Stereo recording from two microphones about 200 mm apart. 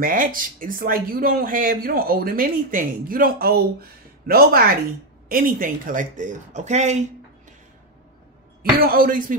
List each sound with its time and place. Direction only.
0.0 s speech: 45° right (ahead or behind)
8.7 s speech: 45° right (ahead or behind)